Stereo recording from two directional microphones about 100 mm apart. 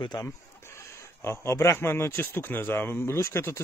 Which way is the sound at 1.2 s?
25° left (ahead or behind).